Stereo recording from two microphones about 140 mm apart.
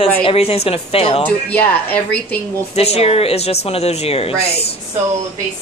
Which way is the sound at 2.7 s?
45° left (ahead or behind).